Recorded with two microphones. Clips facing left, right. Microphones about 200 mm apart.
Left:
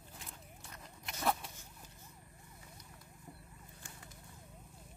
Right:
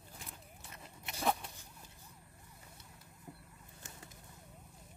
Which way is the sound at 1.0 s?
Centre (ahead or behind).